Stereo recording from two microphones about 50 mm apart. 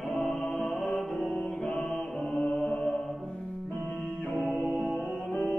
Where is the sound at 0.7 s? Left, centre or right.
Centre.